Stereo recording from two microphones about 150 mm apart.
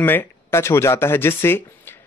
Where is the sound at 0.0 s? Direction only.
15° left (ahead or behind).